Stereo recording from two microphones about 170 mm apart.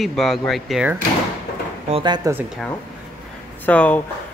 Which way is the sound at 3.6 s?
10° left (ahead or behind).